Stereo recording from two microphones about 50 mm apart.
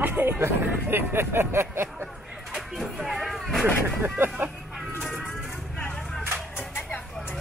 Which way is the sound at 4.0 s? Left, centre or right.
Right.